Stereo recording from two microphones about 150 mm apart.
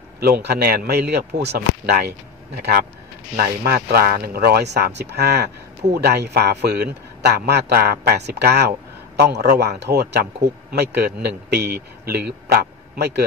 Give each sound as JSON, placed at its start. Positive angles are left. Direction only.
{"t": 0.2, "sound": "a man's voice", "side_deg": -90}
{"t": 3.3, "sound": "a man's voice", "side_deg": -85}